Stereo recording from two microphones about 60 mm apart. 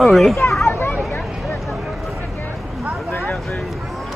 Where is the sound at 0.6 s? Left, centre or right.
Left.